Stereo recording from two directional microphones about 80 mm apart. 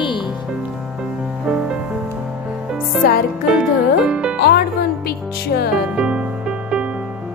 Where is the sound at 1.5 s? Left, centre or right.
Centre.